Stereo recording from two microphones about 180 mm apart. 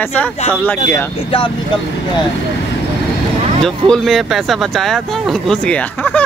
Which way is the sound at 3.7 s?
Centre (ahead or behind).